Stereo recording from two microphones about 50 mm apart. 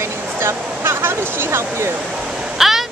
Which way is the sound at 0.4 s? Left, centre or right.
Right.